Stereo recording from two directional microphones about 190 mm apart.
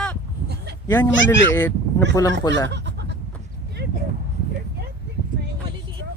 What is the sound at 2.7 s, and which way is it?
Bleat, 65° right (ahead or behind).